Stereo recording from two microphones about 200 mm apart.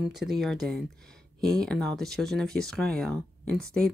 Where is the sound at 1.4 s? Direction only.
Centre (ahead or behind).